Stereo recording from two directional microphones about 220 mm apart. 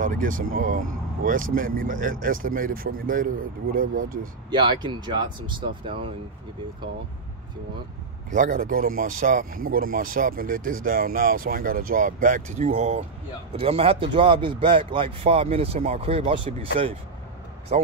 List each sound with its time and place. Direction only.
0.0 s speech: 35° right (ahead or behind)
4.5 s speech: 20° right (ahead or behind)
8.3 s speech: 35° right (ahead or behind)